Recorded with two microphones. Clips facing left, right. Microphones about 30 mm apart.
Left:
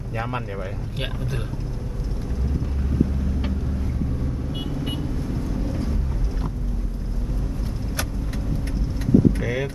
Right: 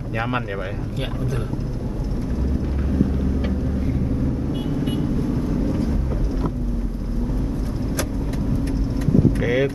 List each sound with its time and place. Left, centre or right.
9.4 s vehicle: right